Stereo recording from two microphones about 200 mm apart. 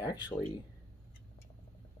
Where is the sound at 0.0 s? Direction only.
20° left (ahead or behind).